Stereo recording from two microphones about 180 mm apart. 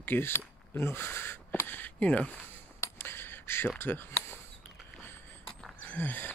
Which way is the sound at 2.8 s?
15° left (ahead or behind).